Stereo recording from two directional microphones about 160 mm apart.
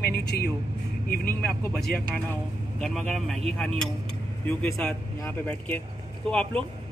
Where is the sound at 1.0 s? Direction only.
65° left (ahead or behind).